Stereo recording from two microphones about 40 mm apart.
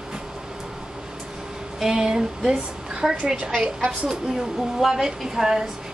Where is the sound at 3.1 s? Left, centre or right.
Right.